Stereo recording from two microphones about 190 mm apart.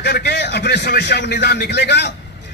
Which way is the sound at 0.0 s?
60° left (ahead or behind).